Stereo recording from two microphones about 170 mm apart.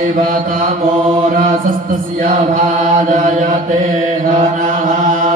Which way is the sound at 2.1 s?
50° right (ahead or behind).